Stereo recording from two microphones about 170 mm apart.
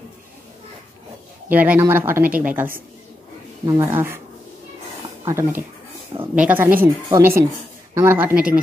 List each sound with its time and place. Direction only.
1.5 s a woman's voice: 10° right (ahead or behind)
5.2 s a woman's voice: 15° right (ahead or behind)